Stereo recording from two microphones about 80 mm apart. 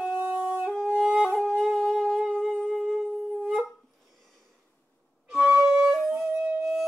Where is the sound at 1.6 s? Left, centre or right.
Centre.